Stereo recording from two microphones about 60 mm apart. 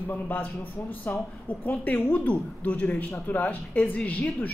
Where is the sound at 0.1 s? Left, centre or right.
Left.